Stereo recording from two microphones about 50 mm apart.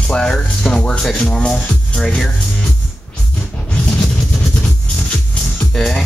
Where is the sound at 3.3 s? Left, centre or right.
Centre.